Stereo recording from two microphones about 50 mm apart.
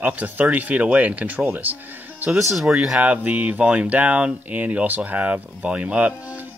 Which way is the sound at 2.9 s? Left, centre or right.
Right.